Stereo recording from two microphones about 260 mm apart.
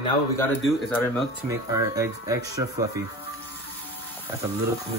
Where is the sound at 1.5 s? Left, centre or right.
Centre.